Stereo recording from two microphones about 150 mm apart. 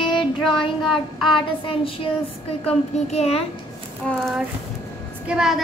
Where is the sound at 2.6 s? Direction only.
45° left (ahead or behind).